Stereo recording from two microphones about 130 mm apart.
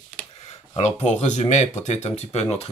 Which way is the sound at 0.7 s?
60° left (ahead or behind).